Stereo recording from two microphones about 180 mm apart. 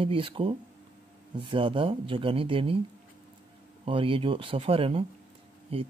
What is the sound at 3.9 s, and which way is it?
Speech, 30° right (ahead or behind).